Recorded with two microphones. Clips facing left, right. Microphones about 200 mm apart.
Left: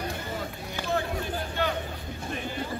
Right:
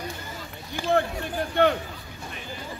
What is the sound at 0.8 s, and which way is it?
Run, 10° right (ahead or behind).